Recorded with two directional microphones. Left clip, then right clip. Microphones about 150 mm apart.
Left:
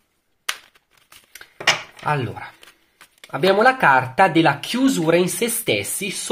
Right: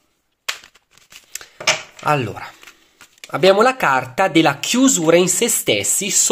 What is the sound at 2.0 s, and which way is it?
Speech, 35° right (ahead or behind).